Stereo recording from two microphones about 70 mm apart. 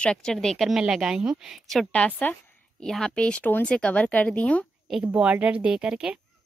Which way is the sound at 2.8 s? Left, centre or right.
Centre.